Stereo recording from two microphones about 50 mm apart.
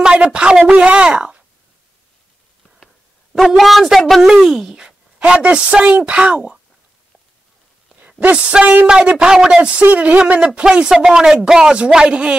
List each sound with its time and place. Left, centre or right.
0.0 s a man's voice: right
3.3 s a woman's voice: centre
4.6 s speech: centre
8.2 s speech: right
8.8 s a man's voice: centre
9.8 s a man's voice: right